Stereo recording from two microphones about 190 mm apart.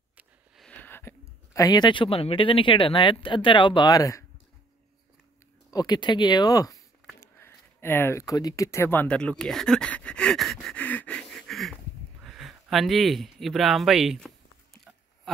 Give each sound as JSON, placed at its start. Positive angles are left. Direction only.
{"t": 0.2, "sound": "speech", "side_deg": 5}
{"t": 5.7, "sound": "speech", "side_deg": 20}